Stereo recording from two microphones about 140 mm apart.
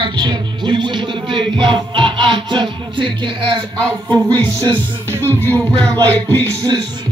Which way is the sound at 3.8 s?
10° left (ahead or behind).